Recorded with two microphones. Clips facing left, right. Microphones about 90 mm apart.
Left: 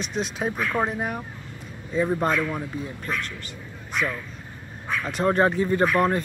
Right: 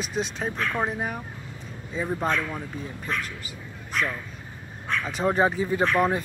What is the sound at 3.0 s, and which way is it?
Speech, 5° right (ahead or behind).